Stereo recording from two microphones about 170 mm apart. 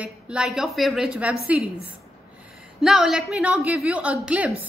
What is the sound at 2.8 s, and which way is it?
A woman's voice, 5° right (ahead or behind).